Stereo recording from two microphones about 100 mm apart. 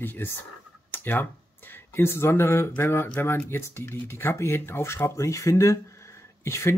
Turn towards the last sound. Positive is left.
turn(degrees=25)  # may be behind; listen again after turning